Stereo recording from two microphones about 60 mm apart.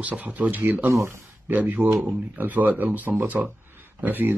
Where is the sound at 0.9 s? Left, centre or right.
Right.